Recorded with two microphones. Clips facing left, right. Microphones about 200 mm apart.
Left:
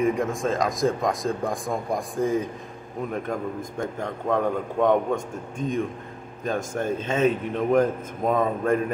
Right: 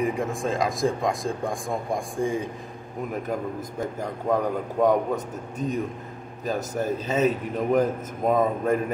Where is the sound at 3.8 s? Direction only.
5° right (ahead or behind).